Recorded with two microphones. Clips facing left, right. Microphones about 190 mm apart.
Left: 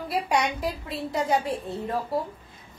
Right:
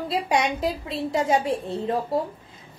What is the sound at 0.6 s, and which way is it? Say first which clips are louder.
A woman's voice: right 4 dB; 20° right (ahead or behind).